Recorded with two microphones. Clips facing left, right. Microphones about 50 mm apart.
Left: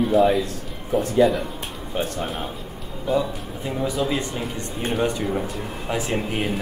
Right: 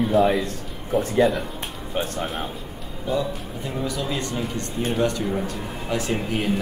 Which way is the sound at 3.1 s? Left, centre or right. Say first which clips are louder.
Left 2 dB; centre.